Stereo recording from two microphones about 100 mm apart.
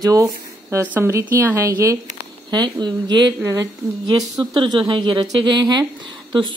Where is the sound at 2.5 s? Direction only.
45° right (ahead or behind).